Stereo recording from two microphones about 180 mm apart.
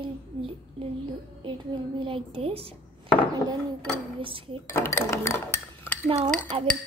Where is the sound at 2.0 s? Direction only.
30° right (ahead or behind).